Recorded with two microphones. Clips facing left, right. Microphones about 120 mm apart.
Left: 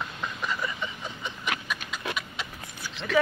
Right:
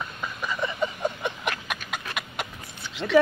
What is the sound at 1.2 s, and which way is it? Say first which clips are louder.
Horse: right 3 dB; 55° right (ahead or behind).